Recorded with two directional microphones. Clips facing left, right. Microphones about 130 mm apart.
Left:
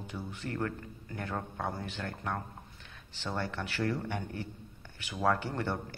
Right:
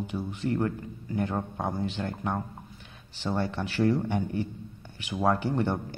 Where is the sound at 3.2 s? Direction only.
15° right (ahead or behind).